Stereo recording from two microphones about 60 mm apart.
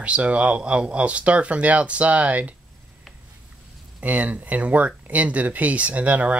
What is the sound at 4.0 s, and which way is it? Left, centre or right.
Speech, right.